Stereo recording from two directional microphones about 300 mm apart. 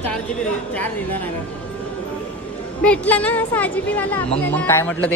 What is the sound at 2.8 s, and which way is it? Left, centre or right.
Speech, centre.